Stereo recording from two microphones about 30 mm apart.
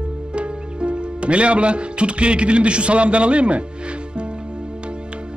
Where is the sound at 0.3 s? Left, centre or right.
Right.